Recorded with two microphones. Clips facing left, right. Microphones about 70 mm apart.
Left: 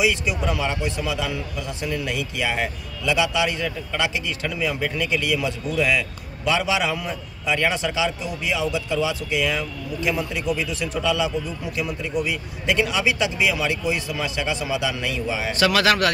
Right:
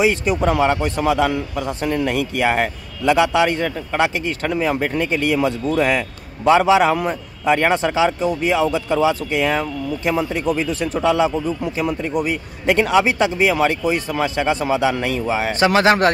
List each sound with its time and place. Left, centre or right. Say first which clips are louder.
0.0 s a man's voice: right 5 dB; right
15.6 s speech: right 4 dB; right